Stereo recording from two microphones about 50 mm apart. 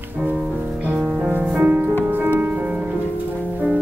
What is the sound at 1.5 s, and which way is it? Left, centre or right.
Music, right.